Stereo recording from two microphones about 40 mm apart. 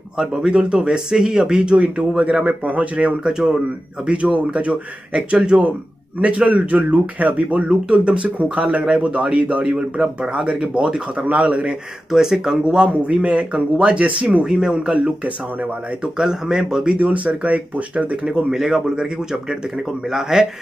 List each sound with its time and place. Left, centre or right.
0.2 s speech: centre
0.5 s speech: right
3.3 s speech: right
9.8 s speech: centre
10.3 s speech: right
12.1 s speech: centre
12.6 s speech: right
14.4 s speech: centre
16.0 s speech: centre
17.0 s speech: right
18.2 s speech: centre